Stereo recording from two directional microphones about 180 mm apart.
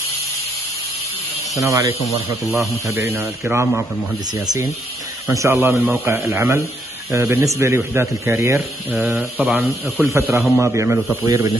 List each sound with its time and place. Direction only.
1.6 s speech: 15° right (ahead or behind)
2.9 s speech: 15° right (ahead or behind)
4.3 s speech: 20° right (ahead or behind)